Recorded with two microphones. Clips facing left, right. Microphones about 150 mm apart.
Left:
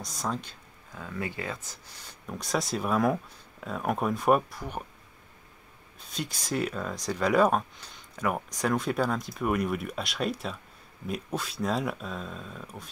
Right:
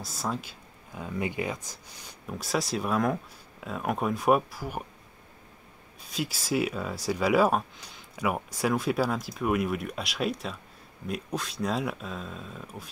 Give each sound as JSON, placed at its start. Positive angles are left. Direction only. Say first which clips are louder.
{"t": 0.0, "sound": "speech", "louder": "even", "side_deg": -5}
{"t": 0.9, "sound": "speech", "louder": "right 4 dB", "side_deg": -20}
{"t": 2.2, "sound": "speech", "louder": "even", "side_deg": 0}
{"t": 6.1, "sound": "speech", "louder": "right 3 dB", "side_deg": -5}